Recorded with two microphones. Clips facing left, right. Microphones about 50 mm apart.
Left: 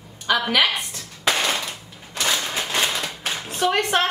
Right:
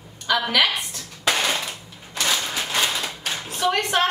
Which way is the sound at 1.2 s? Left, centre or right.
Centre.